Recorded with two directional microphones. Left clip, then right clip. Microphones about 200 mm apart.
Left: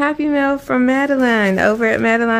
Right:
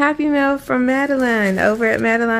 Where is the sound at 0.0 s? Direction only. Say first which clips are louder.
Even; centre (ahead or behind).